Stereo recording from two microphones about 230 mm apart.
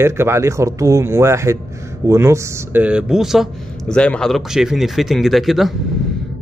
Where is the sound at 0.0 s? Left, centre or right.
Centre.